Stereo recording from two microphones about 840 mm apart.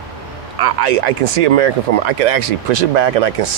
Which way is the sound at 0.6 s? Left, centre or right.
Right.